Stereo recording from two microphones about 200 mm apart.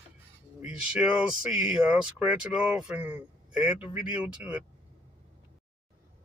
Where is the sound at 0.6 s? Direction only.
5° right (ahead or behind).